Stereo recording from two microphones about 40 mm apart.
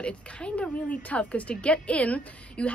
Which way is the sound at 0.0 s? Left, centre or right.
Left.